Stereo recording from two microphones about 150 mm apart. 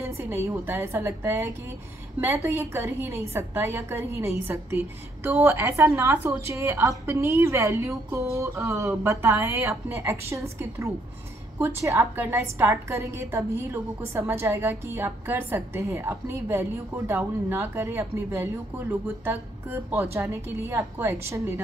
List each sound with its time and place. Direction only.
0.0 s a woman's voice: 15° right (ahead or behind)